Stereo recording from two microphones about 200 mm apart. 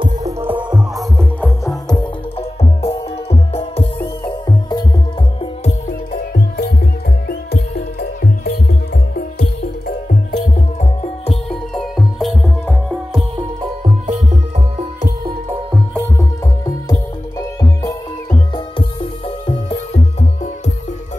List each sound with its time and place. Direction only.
0.0 s music: 15° right (ahead or behind)
0.9 s music: 5° left (ahead or behind)
1.6 s music: 15° left (ahead or behind)
2.6 s music: 30° left (ahead or behind)
6.1 s music: 50° left (ahead or behind); by 11.3 s 35° left (ahead or behind)
11.7 s music: centre (ahead or behind)
13.4 s music: 25° right (ahead or behind)
14.0 s music: 35° right (ahead or behind)
15.9 s music: 10° left (ahead or behind); by 20.2 s 30° left (ahead or behind)